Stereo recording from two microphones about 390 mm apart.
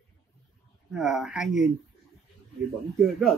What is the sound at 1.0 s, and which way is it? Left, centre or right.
Speech, centre.